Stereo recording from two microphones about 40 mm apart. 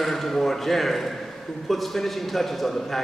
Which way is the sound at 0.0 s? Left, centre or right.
Centre.